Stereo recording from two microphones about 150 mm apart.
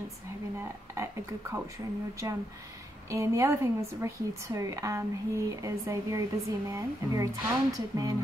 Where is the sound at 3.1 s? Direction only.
20° right (ahead or behind).